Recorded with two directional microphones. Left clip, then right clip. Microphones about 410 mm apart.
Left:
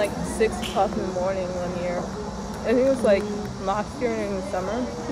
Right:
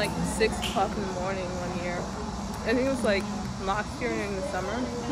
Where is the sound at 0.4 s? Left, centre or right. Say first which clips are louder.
Left 3 dB; left.